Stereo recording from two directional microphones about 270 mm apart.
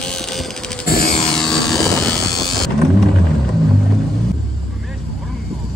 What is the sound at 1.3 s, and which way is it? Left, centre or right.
Helicopter, centre.